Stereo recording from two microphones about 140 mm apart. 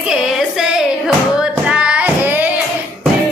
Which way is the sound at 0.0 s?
5° right (ahead or behind).